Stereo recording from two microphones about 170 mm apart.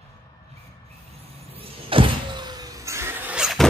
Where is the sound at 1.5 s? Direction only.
35° right (ahead or behind); by 3.7 s centre (ahead or behind).